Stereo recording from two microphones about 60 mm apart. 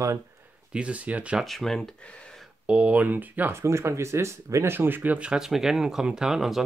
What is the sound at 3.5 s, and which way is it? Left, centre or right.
Speech, right.